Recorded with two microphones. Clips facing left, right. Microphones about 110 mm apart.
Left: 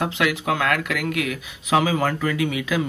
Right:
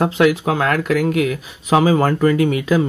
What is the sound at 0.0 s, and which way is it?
Speech, 35° right (ahead or behind).